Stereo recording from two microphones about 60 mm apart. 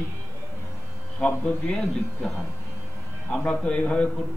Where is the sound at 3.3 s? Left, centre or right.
Centre.